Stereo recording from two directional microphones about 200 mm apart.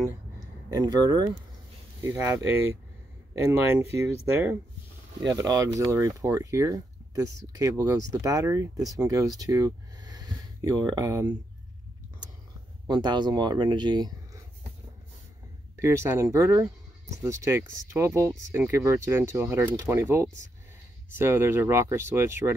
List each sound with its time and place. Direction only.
0.7 s speech: 20° right (ahead or behind)
4.3 s speech: 10° right (ahead or behind)
12.8 s speech: 20° right (ahead or behind)
15.7 s speech: 15° right (ahead or behind)